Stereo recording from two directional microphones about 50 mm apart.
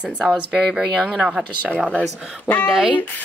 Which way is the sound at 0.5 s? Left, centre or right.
Centre.